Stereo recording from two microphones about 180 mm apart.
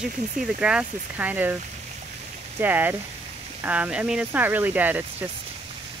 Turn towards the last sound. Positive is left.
turn(degrees=-10)  # may be behind; listen again after turning